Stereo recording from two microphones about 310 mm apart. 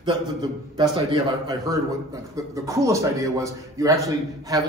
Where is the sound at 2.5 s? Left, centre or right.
Centre.